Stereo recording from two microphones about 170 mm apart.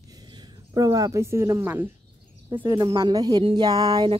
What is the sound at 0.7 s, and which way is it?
Speech, 20° right (ahead or behind).